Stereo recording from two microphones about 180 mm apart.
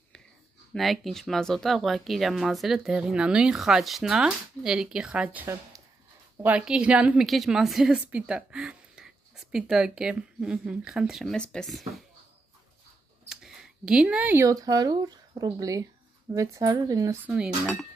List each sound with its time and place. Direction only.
0.7 s a woman's voice: centre (ahead or behind)
13.3 s speech: centre (ahead or behind); by 17.2 s 20° right (ahead or behind)
17.3 s a woman's voice: centre (ahead or behind)